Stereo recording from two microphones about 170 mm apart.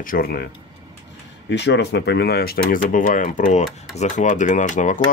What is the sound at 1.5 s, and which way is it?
Speech, 90° left.